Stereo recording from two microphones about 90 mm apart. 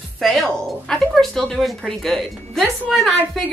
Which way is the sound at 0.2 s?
Centre (ahead or behind).